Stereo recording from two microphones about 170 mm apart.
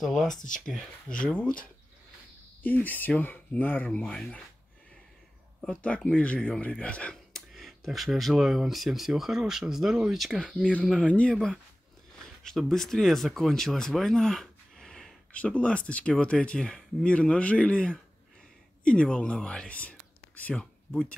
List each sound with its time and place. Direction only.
0.0 s speech: centre (ahead or behind)
2.6 s speech: 10° left (ahead or behind)
5.6 s speech: 5° left (ahead or behind)